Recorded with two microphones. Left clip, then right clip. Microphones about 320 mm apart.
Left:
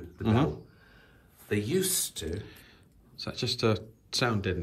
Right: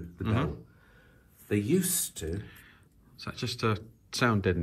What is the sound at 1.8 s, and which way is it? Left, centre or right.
Speech, right.